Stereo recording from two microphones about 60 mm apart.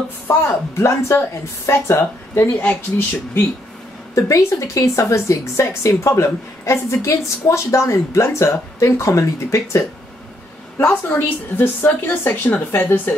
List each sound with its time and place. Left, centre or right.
0.3 s speech: left
0.7 s a woman's voice: left
4.1 s a woman's voice: left
10.8 s speech: left